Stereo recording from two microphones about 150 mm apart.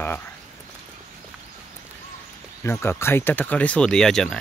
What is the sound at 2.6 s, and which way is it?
Speech, 15° left (ahead or behind).